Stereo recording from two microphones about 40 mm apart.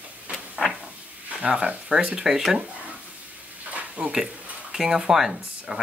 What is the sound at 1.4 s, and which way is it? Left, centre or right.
Speech, right.